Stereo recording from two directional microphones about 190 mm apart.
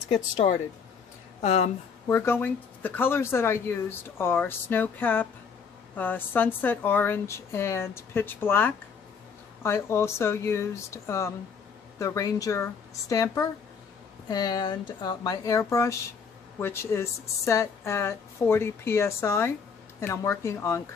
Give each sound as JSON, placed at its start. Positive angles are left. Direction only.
{"t": 0.1, "sound": "speech", "side_deg": 35}
{"t": 2.0, "sound": "a woman's voice", "side_deg": 15}